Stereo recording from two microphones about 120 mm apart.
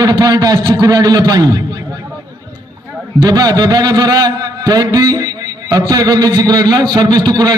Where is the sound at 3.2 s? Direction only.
35° right (ahead or behind).